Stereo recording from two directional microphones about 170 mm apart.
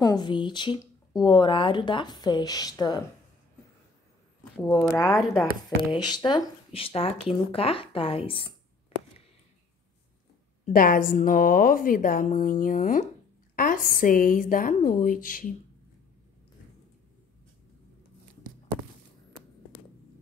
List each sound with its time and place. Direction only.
0.0 s speech: 25° left (ahead or behind)
4.6 s speech: 20° left (ahead or behind)
10.6 s a woman's voice: 55° left (ahead or behind)